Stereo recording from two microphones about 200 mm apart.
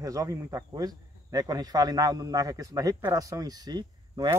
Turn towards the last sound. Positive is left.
turn(degrees=-20)  # may be behind; listen again after turning